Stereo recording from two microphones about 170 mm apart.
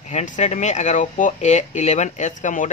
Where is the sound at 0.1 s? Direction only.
40° left (ahead or behind).